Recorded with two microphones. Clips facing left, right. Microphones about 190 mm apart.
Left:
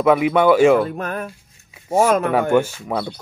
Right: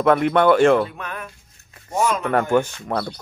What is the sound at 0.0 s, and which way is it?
Speech, 5° left (ahead or behind).